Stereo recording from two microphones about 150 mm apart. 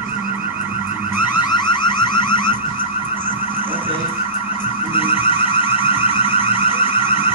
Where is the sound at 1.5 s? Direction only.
30° left (ahead or behind).